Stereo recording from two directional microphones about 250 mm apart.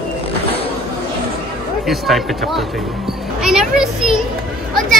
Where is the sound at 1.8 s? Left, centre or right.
Centre.